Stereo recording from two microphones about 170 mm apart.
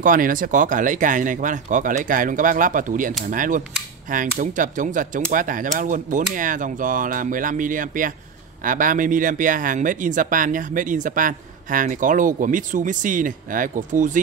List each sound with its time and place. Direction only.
0.0 s speech: 55° right (ahead or behind)